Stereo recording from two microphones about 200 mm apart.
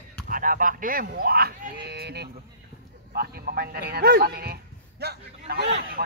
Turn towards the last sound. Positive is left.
turn(degrees=-55)  # may be behind; listen again after turning